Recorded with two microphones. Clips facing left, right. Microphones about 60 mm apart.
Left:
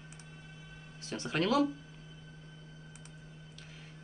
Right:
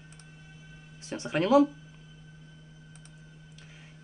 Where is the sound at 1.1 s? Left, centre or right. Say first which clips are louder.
Right 7 dB; centre.